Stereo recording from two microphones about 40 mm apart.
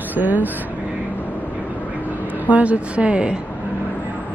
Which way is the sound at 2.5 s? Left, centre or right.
Right.